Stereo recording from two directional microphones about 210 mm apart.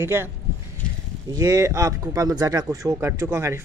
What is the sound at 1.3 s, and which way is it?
Speech, 15° right (ahead or behind).